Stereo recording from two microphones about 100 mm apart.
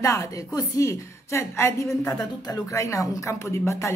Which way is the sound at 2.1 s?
40° left (ahead or behind).